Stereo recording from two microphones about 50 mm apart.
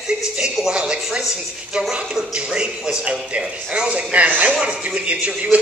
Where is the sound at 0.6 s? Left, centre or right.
Centre.